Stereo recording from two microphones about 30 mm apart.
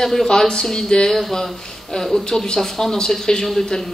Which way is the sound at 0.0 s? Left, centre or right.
Centre.